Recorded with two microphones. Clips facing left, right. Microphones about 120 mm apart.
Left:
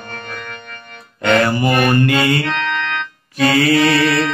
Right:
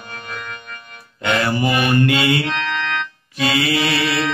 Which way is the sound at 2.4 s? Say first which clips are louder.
Left 2 dB; 55° left (ahead or behind).